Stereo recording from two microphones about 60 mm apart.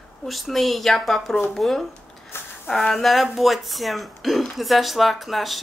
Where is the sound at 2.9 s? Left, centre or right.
Centre.